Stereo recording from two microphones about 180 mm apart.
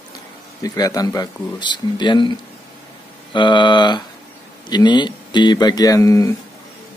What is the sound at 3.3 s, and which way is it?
Speech, 25° left (ahead or behind).